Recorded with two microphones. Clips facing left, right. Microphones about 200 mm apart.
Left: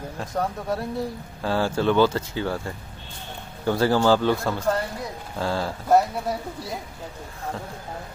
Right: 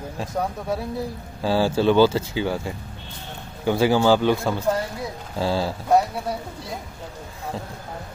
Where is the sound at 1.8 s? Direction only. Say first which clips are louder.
Right 3 dB; 30° right (ahead or behind).